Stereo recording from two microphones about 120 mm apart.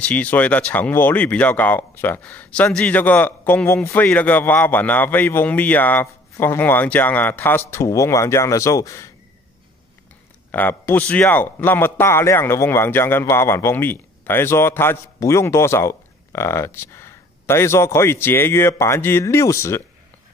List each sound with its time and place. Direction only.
0.0 s a man's voice: 10° left (ahead or behind); by 9.0 s 25° left (ahead or behind)
10.5 s a man's voice: 15° left (ahead or behind)